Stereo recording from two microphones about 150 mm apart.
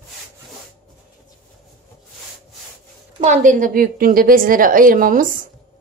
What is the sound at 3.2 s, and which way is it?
A woman's voice, 55° right (ahead or behind).